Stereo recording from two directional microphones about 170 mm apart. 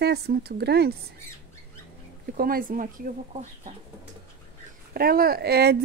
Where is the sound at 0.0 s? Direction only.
70° right (ahead or behind).